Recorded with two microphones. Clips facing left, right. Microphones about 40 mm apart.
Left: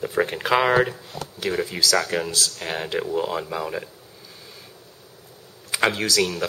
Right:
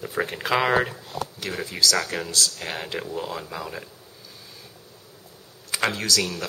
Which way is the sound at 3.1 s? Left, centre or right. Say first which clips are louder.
Left 6 dB; centre.